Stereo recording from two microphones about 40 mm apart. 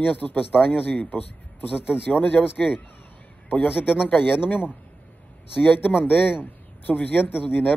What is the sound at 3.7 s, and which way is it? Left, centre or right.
Speech, left.